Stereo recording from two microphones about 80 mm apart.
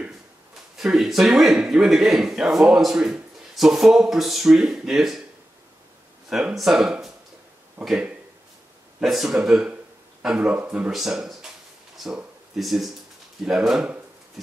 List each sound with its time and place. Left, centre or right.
0.7 s speech: centre
6.5 s speech: centre
7.8 s speech: right
9.0 s speech: centre
10.9 s speech: centre